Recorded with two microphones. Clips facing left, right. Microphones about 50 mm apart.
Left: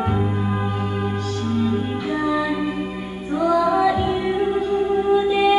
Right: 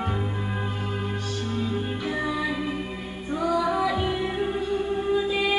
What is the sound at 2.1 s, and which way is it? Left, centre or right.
Music, centre.